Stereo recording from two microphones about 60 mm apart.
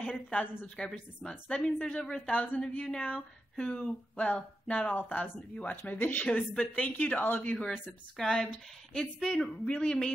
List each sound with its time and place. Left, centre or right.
0.0 s a woman's voice: left
6.2 s a woman's voice: centre